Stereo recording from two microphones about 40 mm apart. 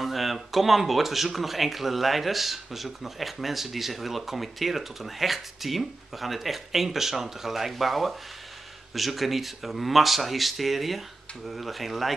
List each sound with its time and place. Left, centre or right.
0.0 s speech: centre